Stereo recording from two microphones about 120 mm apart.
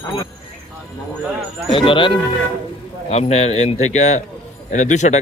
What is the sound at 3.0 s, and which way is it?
A man's voice, 60° left (ahead or behind).